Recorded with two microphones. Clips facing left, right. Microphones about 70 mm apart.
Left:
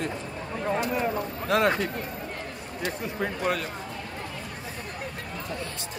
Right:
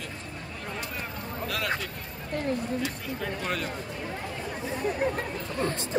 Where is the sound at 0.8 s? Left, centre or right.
Left.